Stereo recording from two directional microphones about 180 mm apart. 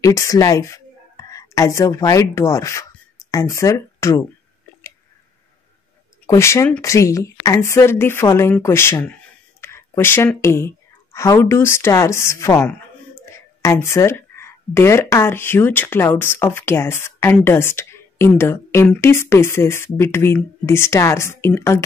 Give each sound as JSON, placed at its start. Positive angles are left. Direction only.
{"t": 0.0, "sound": "speech", "side_deg": 20}
{"t": 6.2, "sound": "a woman's voice", "side_deg": 15}